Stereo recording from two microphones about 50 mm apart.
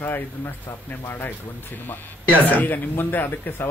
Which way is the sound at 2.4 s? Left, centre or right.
Left.